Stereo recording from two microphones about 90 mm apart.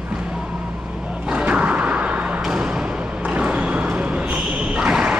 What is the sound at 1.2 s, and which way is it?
Thump, 10° right (ahead or behind).